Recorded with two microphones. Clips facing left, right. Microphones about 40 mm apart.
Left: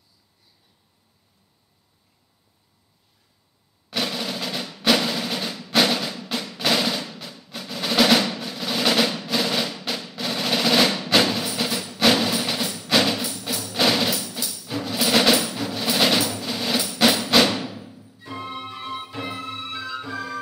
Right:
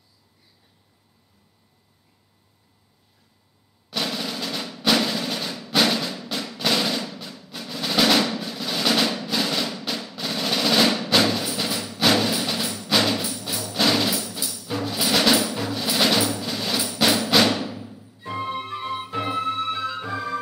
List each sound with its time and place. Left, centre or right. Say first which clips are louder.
3.9 s drum roll: left 1 dB; centre
13.7 s music: even; centre
14.4 s music: right 1 dB; centre
18.2 s music: right 4 dB; centre
18.8 s music: right 3 dB; centre
19.0 s music: right 6 dB; centre